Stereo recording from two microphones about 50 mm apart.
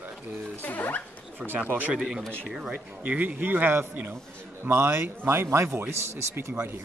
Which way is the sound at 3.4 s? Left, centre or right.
Right.